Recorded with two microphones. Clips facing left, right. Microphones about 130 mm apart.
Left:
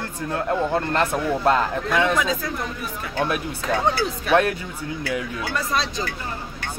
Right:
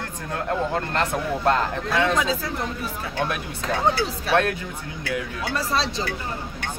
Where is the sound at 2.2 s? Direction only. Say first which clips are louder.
Left 1 dB; 30° right (ahead or behind).